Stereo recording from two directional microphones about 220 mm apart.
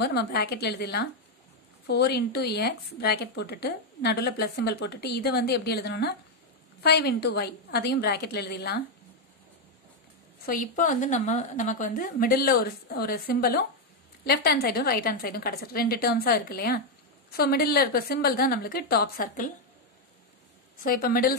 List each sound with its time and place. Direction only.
0.0 s a woman's voice: 45° left (ahead or behind)
10.4 s a woman's voice: 40° left (ahead or behind)
20.8 s a woman's voice: 40° left (ahead or behind)